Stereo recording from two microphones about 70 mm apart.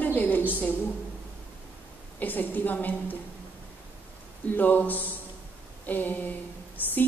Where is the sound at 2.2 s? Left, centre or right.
Left.